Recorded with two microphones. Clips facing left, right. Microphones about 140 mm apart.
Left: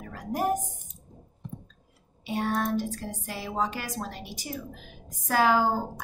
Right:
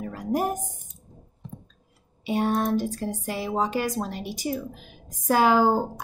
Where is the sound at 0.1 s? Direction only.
20° right (ahead or behind).